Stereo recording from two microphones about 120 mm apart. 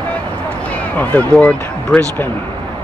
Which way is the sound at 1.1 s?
10° left (ahead or behind).